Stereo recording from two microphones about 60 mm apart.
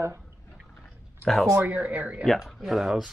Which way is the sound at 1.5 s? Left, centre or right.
Right.